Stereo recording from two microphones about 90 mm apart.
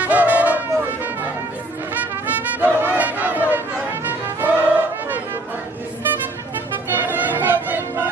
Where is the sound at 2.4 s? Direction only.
20° right (ahead or behind).